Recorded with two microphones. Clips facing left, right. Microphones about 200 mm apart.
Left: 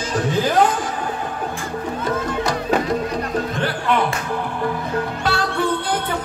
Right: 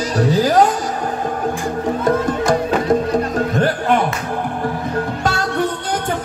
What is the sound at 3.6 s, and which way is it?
Music, 45° right (ahead or behind).